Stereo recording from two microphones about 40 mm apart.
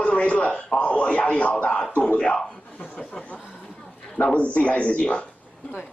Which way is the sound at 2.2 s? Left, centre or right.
Left.